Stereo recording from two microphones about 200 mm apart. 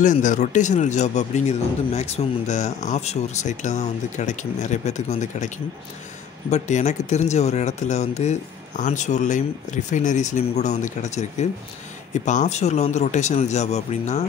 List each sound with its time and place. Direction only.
0.0 s speech: 40° left (ahead or behind)
6.5 s speech: 35° left (ahead or behind)